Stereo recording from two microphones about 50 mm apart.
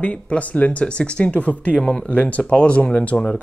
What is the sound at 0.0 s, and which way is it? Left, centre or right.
Speech, left.